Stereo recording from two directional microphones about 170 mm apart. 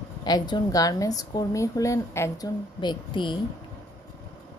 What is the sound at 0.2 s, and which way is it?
A woman's voice, 25° left (ahead or behind).